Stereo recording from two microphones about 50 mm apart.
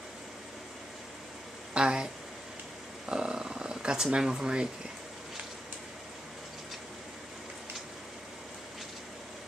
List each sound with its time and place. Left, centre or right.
1.7 s speech: centre
3.1 s speech: centre